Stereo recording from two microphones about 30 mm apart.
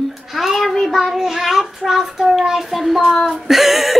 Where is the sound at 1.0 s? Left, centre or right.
Centre.